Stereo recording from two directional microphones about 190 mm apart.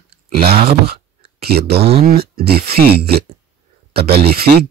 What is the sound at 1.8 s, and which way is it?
Speech, 35° right (ahead or behind).